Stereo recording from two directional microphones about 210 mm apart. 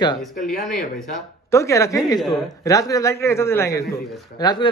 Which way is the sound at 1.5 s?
15° left (ahead or behind).